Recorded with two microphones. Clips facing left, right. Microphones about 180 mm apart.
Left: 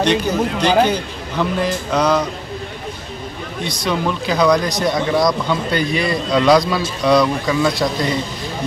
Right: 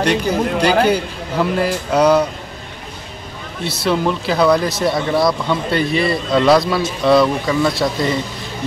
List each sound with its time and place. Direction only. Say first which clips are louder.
0.0 s speech: even; 10° right (ahead or behind)
3.6 s speech: right 3 dB; 5° right (ahead or behind)